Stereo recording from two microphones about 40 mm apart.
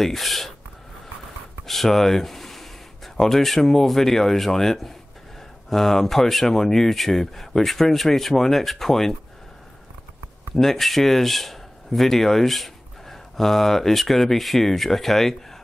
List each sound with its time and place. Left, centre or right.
0.0 s a sound: centre
1.7 s speech: centre
10.5 s speech: centre